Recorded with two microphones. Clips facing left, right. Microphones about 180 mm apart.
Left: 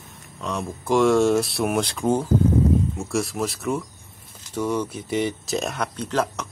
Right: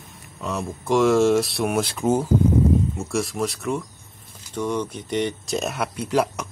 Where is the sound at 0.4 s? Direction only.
5° right (ahead or behind).